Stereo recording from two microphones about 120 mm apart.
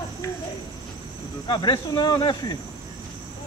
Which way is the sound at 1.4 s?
40° left (ahead or behind).